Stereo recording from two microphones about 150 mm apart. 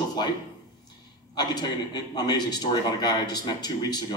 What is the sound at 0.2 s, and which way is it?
A man's voice, 30° left (ahead or behind).